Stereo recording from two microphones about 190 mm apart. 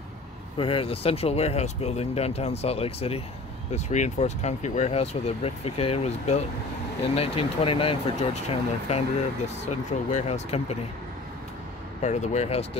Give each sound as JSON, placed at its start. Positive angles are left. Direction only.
{"t": 0.6, "sound": "speech", "side_deg": 30}
{"t": 12.0, "sound": "speech", "side_deg": 35}